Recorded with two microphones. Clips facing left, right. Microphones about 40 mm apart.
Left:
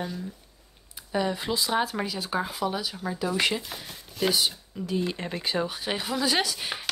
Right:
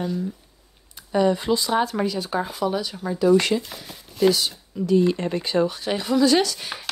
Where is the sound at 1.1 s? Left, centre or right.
Centre.